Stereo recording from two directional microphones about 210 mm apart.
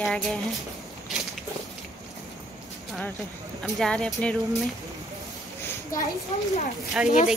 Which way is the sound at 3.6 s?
5° left (ahead or behind).